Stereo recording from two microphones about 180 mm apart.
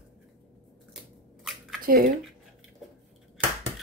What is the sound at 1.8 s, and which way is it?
Squish, 55° right (ahead or behind).